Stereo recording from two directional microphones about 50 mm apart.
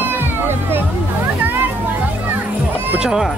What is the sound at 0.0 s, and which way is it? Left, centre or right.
Music, right.